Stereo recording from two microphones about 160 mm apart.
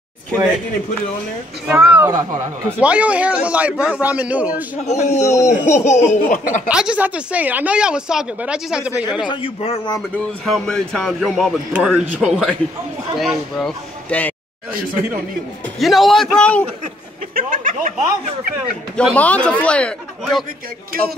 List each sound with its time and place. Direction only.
1.7 s a woman's voice: 10° right (ahead or behind)
2.0 s speech: 25° right (ahead or behind)
2.8 s a woman's voice: 10° right (ahead or behind)
4.8 s speech: 45° left (ahead or behind)
6.7 s a woman's voice: 5° right (ahead or behind)
9.3 s speech: 35° left (ahead or behind)
10.4 s a man's voice: 5° left (ahead or behind)
15.8 s a man's voice: centre (ahead or behind)
17.3 s speech: 60° right (ahead or behind)
18.9 s speech: 10° left (ahead or behind)